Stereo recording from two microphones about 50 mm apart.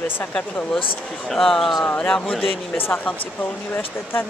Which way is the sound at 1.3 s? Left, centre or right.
Centre.